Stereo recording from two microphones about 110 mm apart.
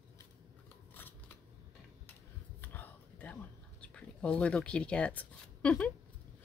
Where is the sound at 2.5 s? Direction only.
15° left (ahead or behind).